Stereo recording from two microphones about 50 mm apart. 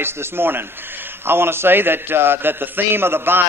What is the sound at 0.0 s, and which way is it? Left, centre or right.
A man's voice, right.